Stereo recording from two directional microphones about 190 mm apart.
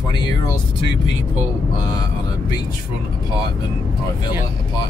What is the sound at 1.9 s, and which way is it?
Speech, 20° left (ahead or behind).